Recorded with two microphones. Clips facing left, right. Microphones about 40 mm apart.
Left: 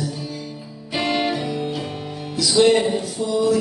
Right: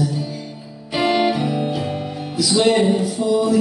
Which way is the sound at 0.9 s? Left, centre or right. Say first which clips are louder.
Right 4 dB; centre.